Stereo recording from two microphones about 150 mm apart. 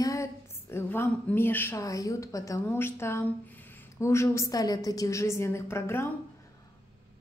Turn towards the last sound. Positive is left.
turn(degrees=15)  # may be behind; listen again after turning